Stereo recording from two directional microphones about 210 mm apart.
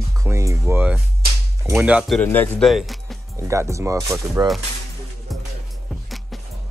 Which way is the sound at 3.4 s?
15° right (ahead or behind).